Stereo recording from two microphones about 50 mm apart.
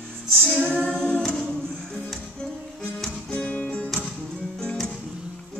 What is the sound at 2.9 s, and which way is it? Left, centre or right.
Music, centre.